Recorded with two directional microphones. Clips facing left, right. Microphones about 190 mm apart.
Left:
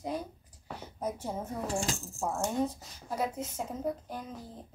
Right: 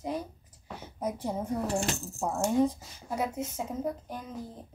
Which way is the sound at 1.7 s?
65° right (ahead or behind).